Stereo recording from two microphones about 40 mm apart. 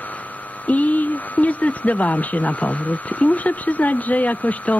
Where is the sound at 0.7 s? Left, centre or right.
Left.